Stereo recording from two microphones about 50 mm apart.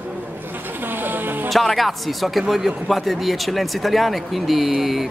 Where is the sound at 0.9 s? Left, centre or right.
Right.